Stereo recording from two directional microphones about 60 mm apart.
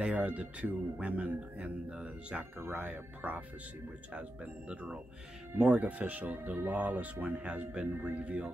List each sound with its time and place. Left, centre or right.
0.0 s speech: right
8.2 s speech: centre